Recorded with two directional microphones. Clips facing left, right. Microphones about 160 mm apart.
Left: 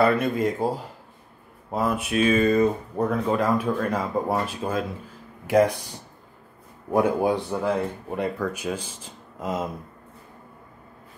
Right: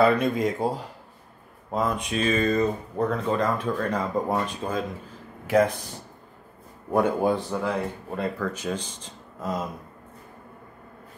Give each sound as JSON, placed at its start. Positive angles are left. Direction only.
{"t": 0.0, "sound": "speech", "side_deg": 5}
{"t": 6.9, "sound": "speech", "side_deg": 5}
{"t": 9.4, "sound": "a sound", "side_deg": 20}